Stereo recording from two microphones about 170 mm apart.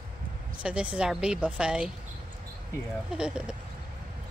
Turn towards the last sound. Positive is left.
turn(degrees=-5)  # may be behind; listen again after turning